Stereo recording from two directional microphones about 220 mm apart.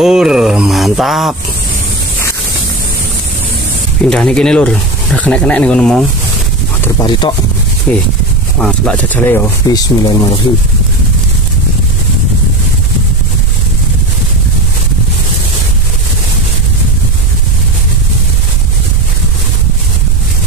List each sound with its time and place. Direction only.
0.0 s speech: centre (ahead or behind)
4.1 s speech: 5° left (ahead or behind)
6.8 s speech: 20° left (ahead or behind)
7.9 s speech: 5° left (ahead or behind); by 10.4 s 20° left (ahead or behind)